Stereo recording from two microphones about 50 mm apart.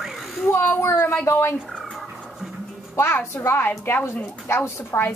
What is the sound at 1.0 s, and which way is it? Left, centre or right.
Speech, left.